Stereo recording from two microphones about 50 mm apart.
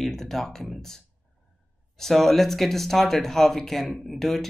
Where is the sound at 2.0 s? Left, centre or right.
Centre.